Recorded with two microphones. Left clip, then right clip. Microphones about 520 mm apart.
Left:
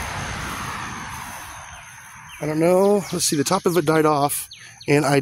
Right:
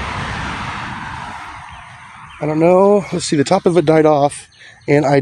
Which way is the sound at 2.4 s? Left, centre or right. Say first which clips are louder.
Right 6 dB; left.